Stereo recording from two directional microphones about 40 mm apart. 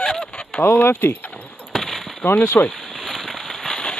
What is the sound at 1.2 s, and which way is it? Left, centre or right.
Keys jangling, left.